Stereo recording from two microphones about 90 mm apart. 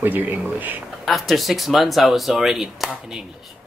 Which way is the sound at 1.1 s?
Centre (ahead or behind).